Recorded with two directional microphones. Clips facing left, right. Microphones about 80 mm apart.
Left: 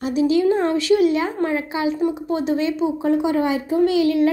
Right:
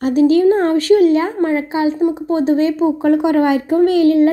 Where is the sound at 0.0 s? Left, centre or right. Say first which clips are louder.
Right 6 dB; right.